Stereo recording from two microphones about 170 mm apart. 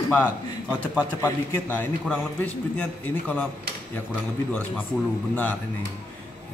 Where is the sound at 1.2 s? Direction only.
10° left (ahead or behind).